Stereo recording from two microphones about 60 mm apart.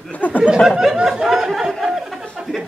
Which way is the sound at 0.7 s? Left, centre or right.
Centre.